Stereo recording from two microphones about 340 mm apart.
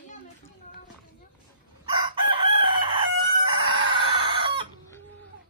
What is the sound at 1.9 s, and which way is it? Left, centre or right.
Chicken, centre.